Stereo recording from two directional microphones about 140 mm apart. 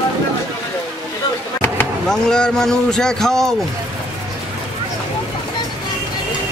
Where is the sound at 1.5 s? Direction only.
15° left (ahead or behind).